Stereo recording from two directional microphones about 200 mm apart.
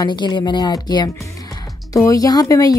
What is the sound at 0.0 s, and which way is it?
Speech, 20° left (ahead or behind).